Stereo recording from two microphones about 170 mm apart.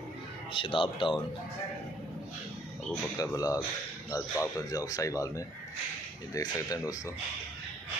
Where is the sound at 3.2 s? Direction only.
20° left (ahead or behind).